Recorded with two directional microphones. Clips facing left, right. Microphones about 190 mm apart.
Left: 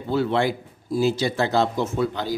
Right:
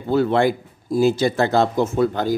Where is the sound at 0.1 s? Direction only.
50° right (ahead or behind).